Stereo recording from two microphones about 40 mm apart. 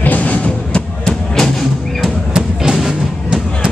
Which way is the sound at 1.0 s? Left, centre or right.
Centre.